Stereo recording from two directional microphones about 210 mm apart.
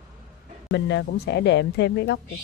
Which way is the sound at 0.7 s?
55° left (ahead or behind).